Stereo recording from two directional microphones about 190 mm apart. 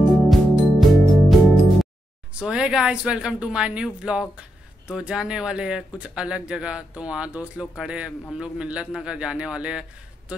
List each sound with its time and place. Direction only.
0.3 s music: centre (ahead or behind)
2.3 s speech: 5° right (ahead or behind)